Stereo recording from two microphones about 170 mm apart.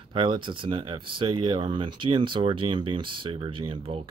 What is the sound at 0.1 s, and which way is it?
Speech, 30° right (ahead or behind).